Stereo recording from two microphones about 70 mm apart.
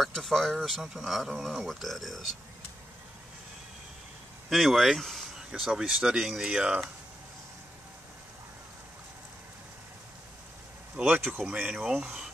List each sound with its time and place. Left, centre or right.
0.0 s speech: centre
4.5 s speech: centre
11.0 s speech: centre